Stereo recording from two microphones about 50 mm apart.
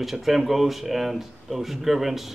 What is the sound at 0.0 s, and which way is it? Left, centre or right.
Speech, centre.